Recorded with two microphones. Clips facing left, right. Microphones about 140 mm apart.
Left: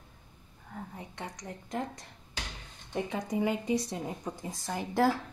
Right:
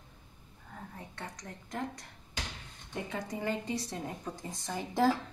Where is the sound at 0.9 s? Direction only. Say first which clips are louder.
Left 3 dB; 20° left (ahead or behind).